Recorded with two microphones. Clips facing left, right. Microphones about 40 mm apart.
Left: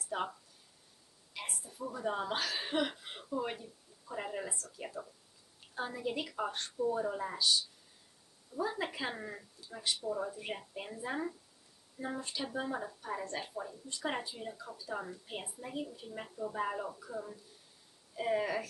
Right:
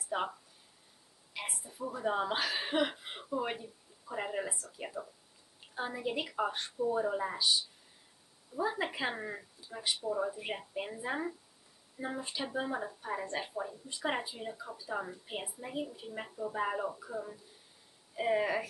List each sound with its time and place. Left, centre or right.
0.1 s a woman's voice: centre